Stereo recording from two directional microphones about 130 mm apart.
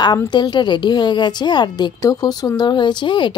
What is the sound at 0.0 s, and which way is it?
A woman's voice, 35° left (ahead or behind).